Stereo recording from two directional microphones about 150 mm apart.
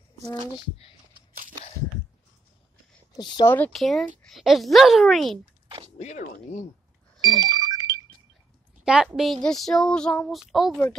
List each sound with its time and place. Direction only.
3.4 s speech: 10° left (ahead or behind)
3.8 s speech: centre (ahead or behind)
5.9 s speech: 50° left (ahead or behind)
7.2 s music: 25° right (ahead or behind)
8.8 s speech: 5° right (ahead or behind)